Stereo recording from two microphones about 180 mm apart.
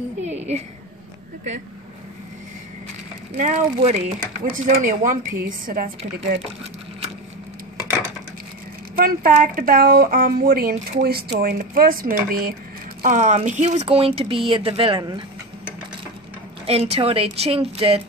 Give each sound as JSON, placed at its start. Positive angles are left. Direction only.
{"t": 0.2, "sound": "a sound", "side_deg": -40}
{"t": 3.3, "sound": "a woman's voice", "side_deg": -40}
{"t": 8.9, "sound": "a woman's voice", "side_deg": -55}
{"t": 13.0, "sound": "speech", "side_deg": -40}
{"t": 16.6, "sound": "speech", "side_deg": -35}